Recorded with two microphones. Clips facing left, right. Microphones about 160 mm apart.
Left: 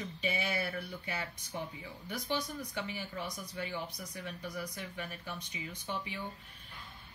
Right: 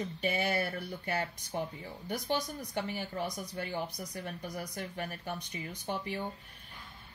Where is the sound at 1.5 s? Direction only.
35° right (ahead or behind).